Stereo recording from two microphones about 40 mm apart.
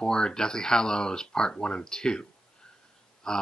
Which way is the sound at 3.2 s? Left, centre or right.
Centre.